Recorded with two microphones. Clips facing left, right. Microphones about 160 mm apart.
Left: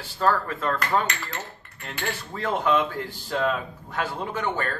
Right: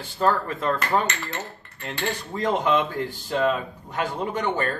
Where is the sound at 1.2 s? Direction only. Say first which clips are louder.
Right 3 dB; centre (ahead or behind).